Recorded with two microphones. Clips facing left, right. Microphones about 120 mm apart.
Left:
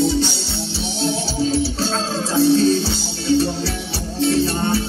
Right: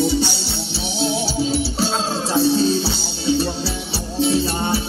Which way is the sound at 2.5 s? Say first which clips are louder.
Left 2 dB; 15° right (ahead or behind).